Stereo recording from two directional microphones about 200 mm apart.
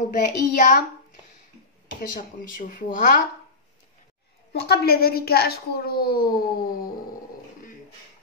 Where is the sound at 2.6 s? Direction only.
40° left (ahead or behind).